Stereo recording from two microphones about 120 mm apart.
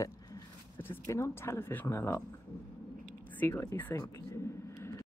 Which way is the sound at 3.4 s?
20° left (ahead or behind).